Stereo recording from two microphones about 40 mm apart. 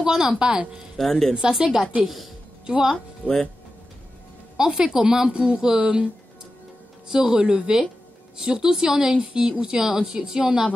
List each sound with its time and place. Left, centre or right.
0.0 s speech: centre
0.9 s speech: centre
1.3 s speech: centre
2.6 s speech: centre
3.2 s speech: left
4.6 s speech: centre
7.1 s speech: right